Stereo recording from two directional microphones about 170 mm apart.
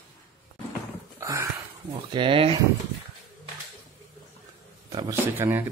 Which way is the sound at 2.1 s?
30° right (ahead or behind).